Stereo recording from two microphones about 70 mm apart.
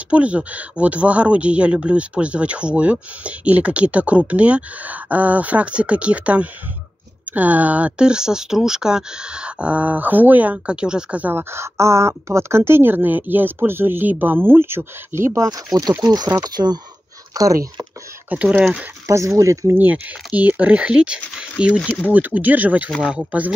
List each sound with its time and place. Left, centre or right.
0.1 s speech: centre
11.3 s speech: right
15.5 s speech: right
16.0 s speech: right
17.3 s speech: right
18.3 s speech: right
19.0 s speech: right
20.3 s speech: right